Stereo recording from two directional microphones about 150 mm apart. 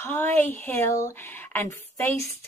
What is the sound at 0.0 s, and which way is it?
A woman's voice, 15° left (ahead or behind).